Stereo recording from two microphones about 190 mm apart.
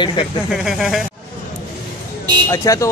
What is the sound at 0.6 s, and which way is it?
Speech, centre (ahead or behind).